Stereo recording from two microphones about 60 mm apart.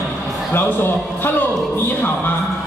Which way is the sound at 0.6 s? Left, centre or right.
Left.